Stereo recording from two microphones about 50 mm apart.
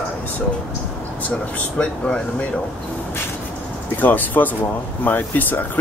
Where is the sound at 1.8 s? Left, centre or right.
Left.